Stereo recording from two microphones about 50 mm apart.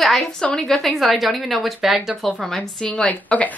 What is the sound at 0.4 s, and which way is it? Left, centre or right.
A woman's voice, centre.